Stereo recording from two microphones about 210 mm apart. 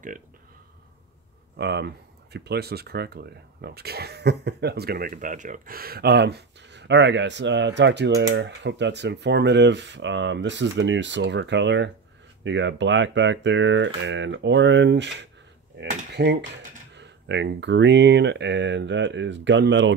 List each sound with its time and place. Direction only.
1.6 s speech: 55° right (ahead or behind)